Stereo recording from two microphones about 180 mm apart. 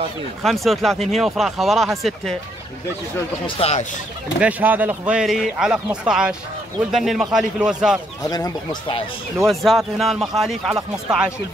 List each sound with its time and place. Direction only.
0.4 s speech: centre (ahead or behind)
3.4 s speech: 30° left (ahead or behind)
4.4 s speech: 10° right (ahead or behind)
8.2 s speech: 20° left (ahead or behind)
9.5 s speech: centre (ahead or behind)